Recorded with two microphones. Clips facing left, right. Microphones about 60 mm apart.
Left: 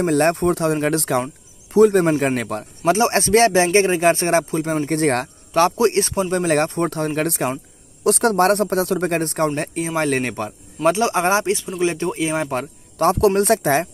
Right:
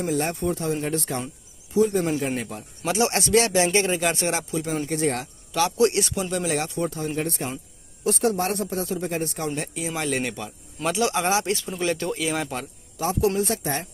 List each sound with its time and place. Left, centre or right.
0.0 s speech: left
1.7 s a man's voice: left
2.8 s a man's voice: left
4.8 s speech: left
5.5 s a man's voice: left
7.2 s a man's voice: left
9.6 s speech: left
10.8 s a man's voice: left
13.0 s a man's voice: left